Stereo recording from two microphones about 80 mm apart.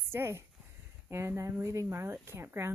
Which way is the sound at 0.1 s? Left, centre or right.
Right.